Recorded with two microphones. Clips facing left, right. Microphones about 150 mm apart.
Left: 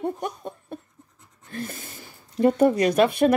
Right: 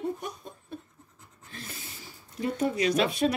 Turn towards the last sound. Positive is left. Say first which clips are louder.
# left 6 dB
turn(degrees=55)  # may be behind; listen again after turning